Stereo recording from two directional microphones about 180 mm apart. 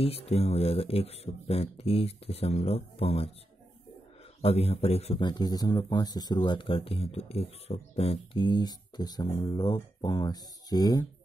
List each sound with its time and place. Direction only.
0.0 s speech: 35° left (ahead or behind)
4.4 s a man's voice: 35° left (ahead or behind)